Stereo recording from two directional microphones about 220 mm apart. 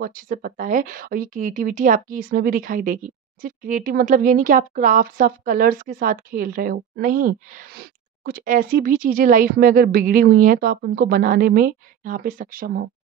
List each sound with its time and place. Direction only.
0.0 s speech: 40° right (ahead or behind)